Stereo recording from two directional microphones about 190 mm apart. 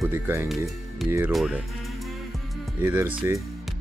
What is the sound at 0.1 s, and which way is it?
Speech, 15° right (ahead or behind).